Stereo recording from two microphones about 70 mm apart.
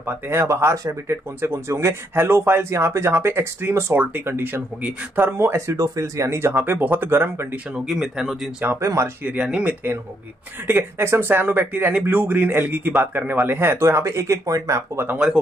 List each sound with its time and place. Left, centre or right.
0.0 s speech: right
5.4 s speech: right
7.9 s speech: centre
8.8 s speech: right
9.2 s speech: centre
10.7 s speech: right
15.1 s speech: centre